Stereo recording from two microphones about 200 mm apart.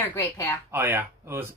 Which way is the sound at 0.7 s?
10° right (ahead or behind).